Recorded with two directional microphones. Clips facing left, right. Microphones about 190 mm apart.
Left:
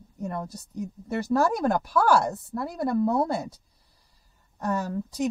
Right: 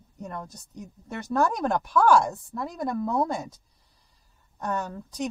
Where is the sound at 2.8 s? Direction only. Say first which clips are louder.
Left 5 dB; 35° left (ahead or behind).